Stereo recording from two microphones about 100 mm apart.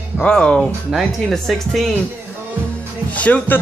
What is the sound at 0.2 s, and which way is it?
Speech, 10° left (ahead or behind).